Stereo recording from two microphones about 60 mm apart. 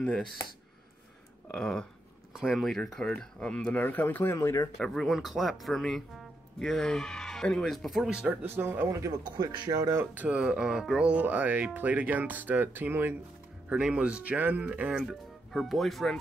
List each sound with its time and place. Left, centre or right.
1.5 s speech: centre
2.3 s speech: centre
2.6 s speech: centre
3.8 s speech: left
4.2 s speech: left
4.7 s speech: centre
8.0 s speech: centre
8.3 s speech: right
8.8 s speech: right
10.1 s speech: right
10.4 s speech: centre
11.0 s speech: right
13.7 s speech: centre
15.0 s speech: centre